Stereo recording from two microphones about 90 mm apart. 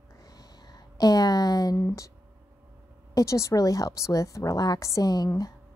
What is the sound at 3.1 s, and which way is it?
Speech, 35° left (ahead or behind).